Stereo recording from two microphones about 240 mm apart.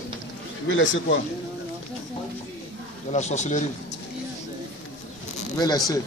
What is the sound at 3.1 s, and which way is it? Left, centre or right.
Speech, left.